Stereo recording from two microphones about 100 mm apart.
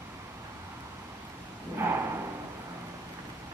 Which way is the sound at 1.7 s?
25° right (ahead or behind).